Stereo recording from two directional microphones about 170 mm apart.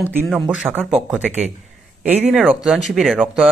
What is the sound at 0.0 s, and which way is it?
Speech, 10° right (ahead or behind).